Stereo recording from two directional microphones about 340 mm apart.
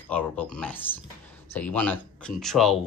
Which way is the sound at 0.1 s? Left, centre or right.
Centre.